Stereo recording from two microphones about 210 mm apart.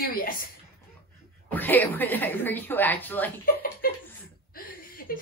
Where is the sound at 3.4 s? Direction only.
45° left (ahead or behind).